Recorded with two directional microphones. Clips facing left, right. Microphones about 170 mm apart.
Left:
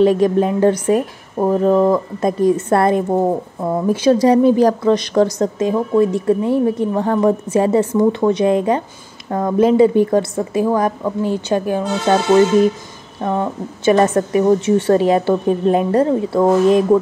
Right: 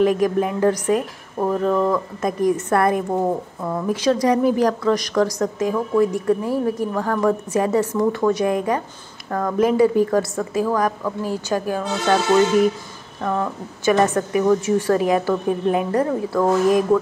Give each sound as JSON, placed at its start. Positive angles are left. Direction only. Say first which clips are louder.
{"t": 0.0, "sound": "speech", "louder": "left 4 dB", "side_deg": 30}
{"t": 13.2, "sound": "speech", "louder": "left 4 dB", "side_deg": 25}